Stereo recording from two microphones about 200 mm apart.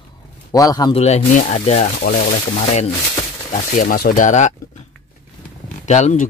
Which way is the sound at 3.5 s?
45° left (ahead or behind).